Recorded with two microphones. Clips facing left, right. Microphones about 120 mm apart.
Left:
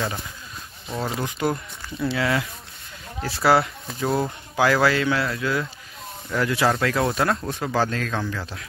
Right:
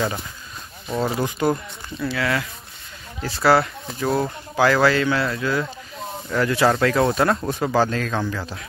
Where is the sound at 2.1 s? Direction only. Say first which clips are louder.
Even; 25° left (ahead or behind).